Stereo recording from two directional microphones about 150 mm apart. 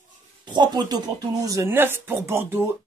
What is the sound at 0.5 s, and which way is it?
Speech, 30° right (ahead or behind).